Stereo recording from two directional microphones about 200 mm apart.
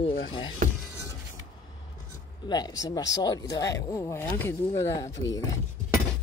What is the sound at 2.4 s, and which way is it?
Speech, 20° left (ahead or behind).